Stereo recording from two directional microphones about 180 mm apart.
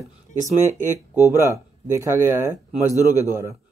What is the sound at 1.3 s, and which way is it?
A man's voice, 15° right (ahead or behind).